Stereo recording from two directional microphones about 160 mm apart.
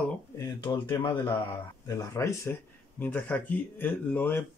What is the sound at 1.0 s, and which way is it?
Speech, 30° left (ahead or behind).